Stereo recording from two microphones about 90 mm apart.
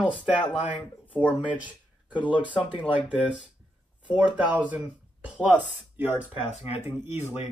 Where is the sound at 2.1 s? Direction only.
65° left (ahead or behind).